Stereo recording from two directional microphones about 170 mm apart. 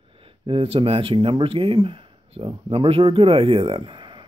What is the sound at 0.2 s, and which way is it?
Speech, 35° right (ahead or behind).